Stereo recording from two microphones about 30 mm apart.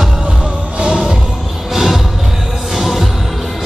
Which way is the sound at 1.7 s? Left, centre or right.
Centre.